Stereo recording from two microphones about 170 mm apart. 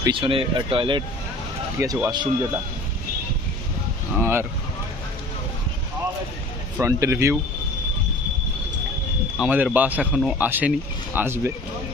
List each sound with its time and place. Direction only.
0.0 s speech: 30° right (ahead or behind)
1.8 s speech: 20° right (ahead or behind)
4.2 s speech: 15° right (ahead or behind)
6.8 s speech: 15° right (ahead or behind)
9.4 s speech: 10° right (ahead or behind)